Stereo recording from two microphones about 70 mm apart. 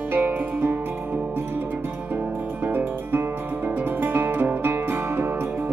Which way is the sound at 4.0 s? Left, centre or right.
Right.